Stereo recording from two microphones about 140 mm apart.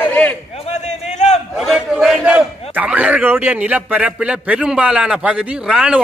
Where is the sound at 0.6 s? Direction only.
55° left (ahead or behind).